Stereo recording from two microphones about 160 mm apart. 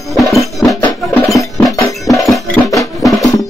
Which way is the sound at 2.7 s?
20° left (ahead or behind).